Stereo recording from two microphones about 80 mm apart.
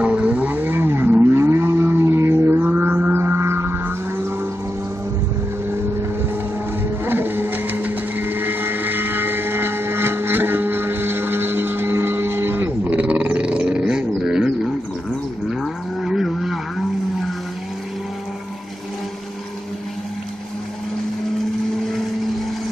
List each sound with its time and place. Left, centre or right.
0.0 s vehicle: centre; by 4.3 s right
7.1 s vehicle: right; by 14.5 s centre
15.6 s livestock: centre